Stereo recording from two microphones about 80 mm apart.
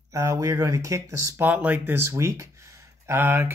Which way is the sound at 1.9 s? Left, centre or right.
Right.